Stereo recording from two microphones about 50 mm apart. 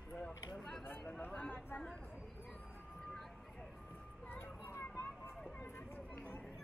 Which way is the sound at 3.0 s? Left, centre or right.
Centre.